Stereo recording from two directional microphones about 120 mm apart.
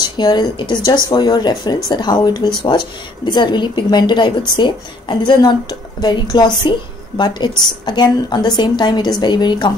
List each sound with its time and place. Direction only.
0.2 s speech: 35° left (ahead or behind)